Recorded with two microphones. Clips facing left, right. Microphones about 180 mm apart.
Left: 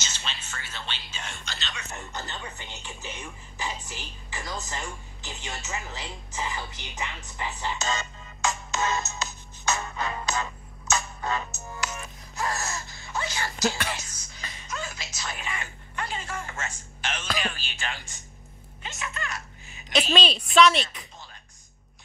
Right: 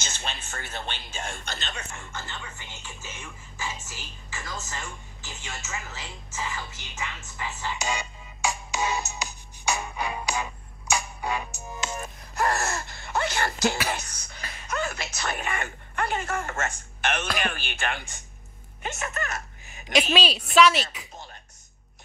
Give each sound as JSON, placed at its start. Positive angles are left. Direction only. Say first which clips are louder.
{"t": 0.0, "sound": "speech", "louder": "right 3 dB", "side_deg": -50}
{"t": 2.0, "sound": "speech", "louder": "left 2 dB", "side_deg": 20}
{"t": 7.7, "sound": "music", "louder": "even", "side_deg": -10}
{"t": 12.0, "sound": "wail", "louder": "right 5 dB", "side_deg": -60}
{"t": 13.8, "sound": "music", "louder": "right 4 dB", "side_deg": -60}
{"t": 18.8, "sound": "speech", "louder": "right 4 dB", "side_deg": -50}
{"t": 19.9, "sound": "a woman's voice", "louder": "right 1 dB", "side_deg": -10}